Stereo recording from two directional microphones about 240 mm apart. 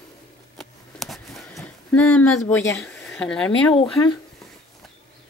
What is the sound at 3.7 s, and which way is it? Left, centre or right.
Speech, left.